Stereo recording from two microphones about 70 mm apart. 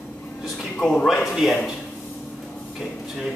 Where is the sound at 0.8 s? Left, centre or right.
Centre.